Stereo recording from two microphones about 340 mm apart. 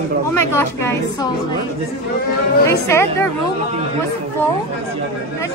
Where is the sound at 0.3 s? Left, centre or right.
Right.